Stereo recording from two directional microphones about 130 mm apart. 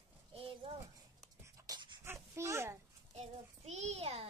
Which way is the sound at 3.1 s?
60° right (ahead or behind).